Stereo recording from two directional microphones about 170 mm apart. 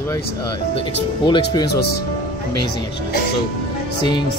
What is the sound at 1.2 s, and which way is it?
Speech, 25° left (ahead or behind).